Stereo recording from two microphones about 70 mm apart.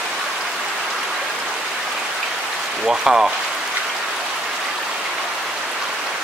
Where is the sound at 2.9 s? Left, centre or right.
Centre.